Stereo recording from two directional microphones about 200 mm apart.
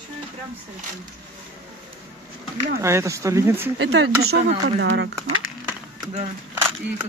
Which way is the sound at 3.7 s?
65° right (ahead or behind).